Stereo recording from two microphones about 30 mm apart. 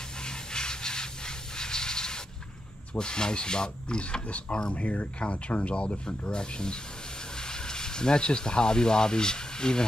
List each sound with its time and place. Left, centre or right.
0.2 s a sound: left
2.9 s speech: left
4.7 s speech: left